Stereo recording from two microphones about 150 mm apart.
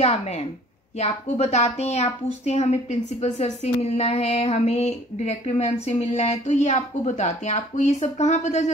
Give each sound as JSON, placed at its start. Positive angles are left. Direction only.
{"t": 0.0, "sound": "a woman's voice", "side_deg": 45}